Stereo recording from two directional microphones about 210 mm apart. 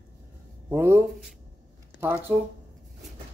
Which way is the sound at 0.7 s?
10° right (ahead or behind).